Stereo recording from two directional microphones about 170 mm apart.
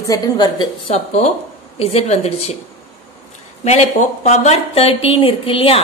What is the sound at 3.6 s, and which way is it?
A woman's voice, 40° left (ahead or behind).